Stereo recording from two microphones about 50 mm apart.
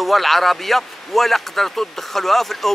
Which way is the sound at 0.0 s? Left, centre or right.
Centre.